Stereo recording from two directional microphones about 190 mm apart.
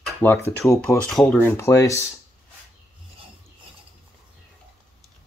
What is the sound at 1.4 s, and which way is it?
Speech, 15° left (ahead or behind).